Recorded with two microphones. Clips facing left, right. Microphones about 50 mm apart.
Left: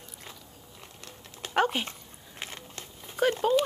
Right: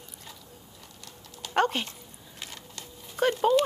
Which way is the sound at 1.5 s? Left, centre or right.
Centre.